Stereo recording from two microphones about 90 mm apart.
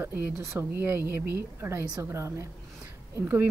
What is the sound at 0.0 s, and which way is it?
Speech, 30° right (ahead or behind).